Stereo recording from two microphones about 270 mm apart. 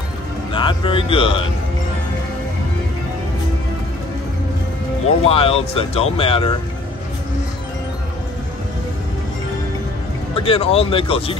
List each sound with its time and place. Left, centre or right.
0.5 s speech: centre
5.2 s speech: left
10.3 s speech: left